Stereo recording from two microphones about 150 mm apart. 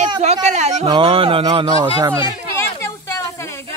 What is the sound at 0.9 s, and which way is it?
Speech, 35° right (ahead or behind).